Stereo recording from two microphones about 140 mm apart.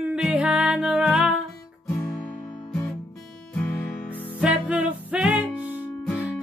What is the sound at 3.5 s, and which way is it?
Music, 15° left (ahead or behind).